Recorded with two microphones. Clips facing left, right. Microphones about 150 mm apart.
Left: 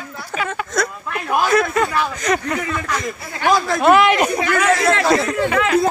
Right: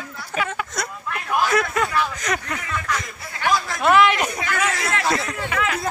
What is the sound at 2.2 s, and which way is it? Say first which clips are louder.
Speech: left 7 dB; 30° left (ahead or behind).